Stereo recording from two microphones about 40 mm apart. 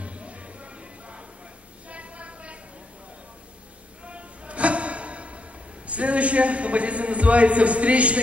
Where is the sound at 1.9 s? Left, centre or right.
Right.